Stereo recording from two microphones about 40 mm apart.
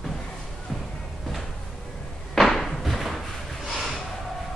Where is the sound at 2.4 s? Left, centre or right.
Centre.